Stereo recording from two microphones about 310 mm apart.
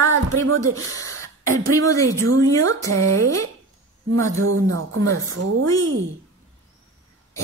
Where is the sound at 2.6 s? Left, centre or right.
Right.